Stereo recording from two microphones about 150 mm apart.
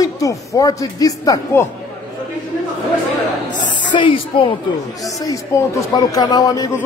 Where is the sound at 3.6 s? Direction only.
30° left (ahead or behind).